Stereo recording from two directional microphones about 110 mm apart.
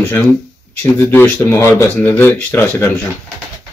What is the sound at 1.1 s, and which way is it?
Speech, 20° left (ahead or behind).